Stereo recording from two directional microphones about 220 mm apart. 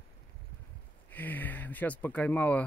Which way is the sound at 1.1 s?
10° left (ahead or behind).